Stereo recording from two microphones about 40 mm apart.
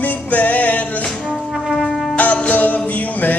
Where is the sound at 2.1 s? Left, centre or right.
Left.